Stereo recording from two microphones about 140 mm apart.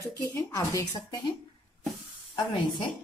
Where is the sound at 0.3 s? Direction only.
25° left (ahead or behind).